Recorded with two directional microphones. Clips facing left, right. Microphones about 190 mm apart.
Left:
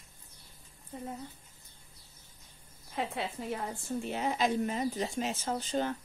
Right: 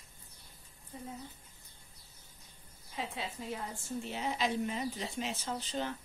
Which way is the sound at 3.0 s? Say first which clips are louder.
Left 5 dB; 55° left (ahead or behind).